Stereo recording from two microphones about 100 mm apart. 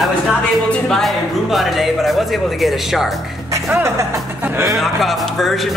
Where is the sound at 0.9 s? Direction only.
Centre (ahead or behind).